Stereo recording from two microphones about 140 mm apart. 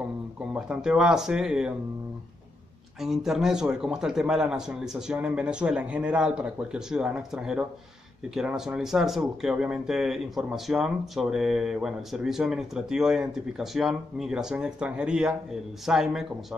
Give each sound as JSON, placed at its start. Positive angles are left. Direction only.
{"t": 0.5, "sound": "speech", "side_deg": -5}
{"t": 3.0, "sound": "speech", "side_deg": 0}